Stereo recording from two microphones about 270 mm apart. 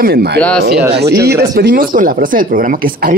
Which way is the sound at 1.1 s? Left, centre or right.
Right.